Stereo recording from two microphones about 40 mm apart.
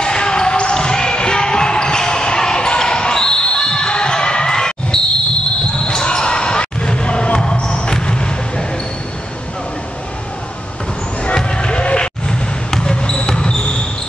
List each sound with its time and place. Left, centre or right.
0.0 s basketball bounce: left
11.3 s basketball bounce: left